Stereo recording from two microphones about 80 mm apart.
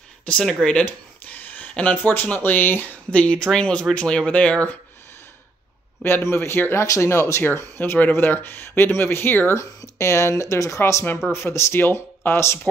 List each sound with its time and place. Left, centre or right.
0.2 s speech: centre
6.0 s speech: left
9.6 s speech: left